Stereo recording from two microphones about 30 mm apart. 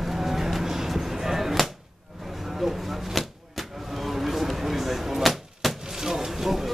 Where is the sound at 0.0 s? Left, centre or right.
Centre.